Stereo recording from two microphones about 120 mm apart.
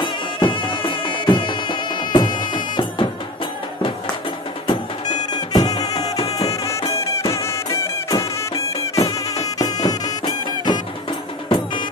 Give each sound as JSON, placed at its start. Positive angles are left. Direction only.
{"t": 0.0, "sound": "music", "side_deg": 45}
{"t": 5.5, "sound": "music", "side_deg": 35}